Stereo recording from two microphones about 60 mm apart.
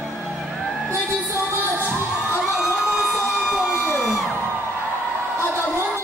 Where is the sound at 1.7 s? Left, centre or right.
Right.